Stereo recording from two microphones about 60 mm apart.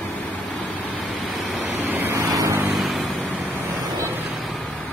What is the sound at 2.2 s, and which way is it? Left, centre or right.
Vehicle, right.